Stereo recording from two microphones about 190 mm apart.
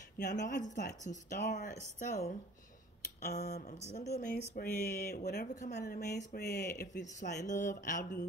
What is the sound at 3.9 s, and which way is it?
Speech, 35° left (ahead or behind).